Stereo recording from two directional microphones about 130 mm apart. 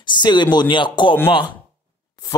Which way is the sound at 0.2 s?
35° left (ahead or behind).